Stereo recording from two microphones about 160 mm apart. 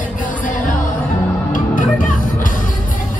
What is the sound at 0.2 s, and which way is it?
Music, 55° left (ahead or behind).